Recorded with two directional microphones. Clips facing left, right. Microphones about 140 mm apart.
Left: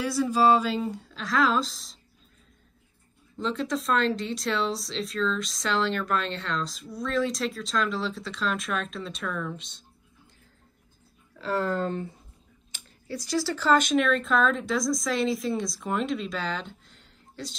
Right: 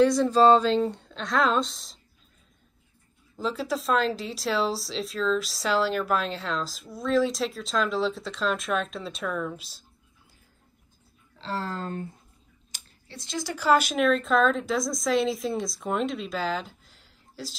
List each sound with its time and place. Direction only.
0.0 s speech: 10° left (ahead or behind)
3.3 s speech: 5° right (ahead or behind)
11.3 s speech: 30° right (ahead or behind)
13.1 s speech: 25° right (ahead or behind); by 17.6 s 5° right (ahead or behind)